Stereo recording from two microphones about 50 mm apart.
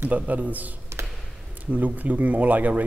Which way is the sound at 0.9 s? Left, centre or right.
Right.